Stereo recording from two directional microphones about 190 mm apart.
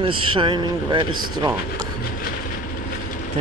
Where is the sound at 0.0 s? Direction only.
25° right (ahead or behind).